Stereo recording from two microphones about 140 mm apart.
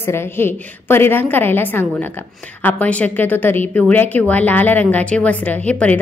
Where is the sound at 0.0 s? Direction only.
15° left (ahead or behind).